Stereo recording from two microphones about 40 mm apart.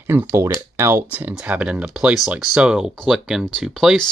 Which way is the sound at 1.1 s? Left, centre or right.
Right.